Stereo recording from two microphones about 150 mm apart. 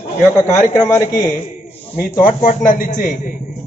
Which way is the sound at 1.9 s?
60° left (ahead or behind).